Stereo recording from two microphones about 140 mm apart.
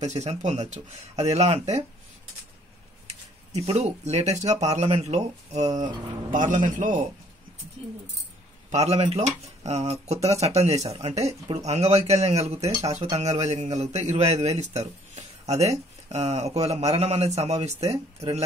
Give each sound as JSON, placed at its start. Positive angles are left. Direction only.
{"t": 0.0, "sound": "a man's voice", "side_deg": -55}
{"t": 3.1, "sound": "speech", "side_deg": -50}
{"t": 6.3, "sound": "a man's voice", "side_deg": -65}
{"t": 8.7, "sound": "a man's voice", "side_deg": -50}